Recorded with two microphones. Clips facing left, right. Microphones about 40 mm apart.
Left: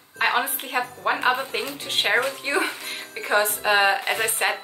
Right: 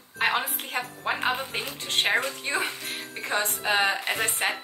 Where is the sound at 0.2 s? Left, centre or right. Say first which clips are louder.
Left 3 dB; centre.